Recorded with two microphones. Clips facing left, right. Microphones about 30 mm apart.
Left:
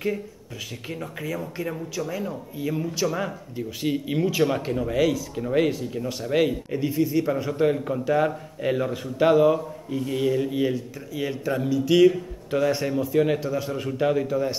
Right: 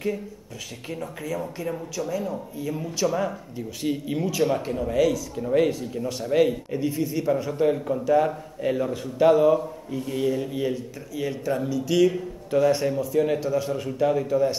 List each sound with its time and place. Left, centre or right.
0.8 s speech: centre
13.4 s speech: centre